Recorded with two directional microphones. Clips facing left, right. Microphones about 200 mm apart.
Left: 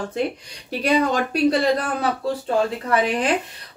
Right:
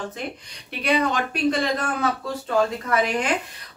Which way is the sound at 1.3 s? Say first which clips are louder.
Left 4 dB; 35° left (ahead or behind).